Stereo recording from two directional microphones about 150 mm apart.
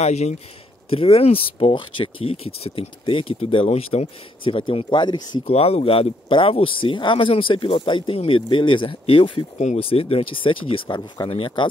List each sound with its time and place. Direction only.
0.0 s speech: 45° left (ahead or behind); by 5.4 s 30° left (ahead or behind)
5.5 s speech: 40° left (ahead or behind)